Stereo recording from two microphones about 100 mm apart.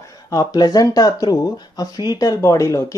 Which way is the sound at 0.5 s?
40° left (ahead or behind).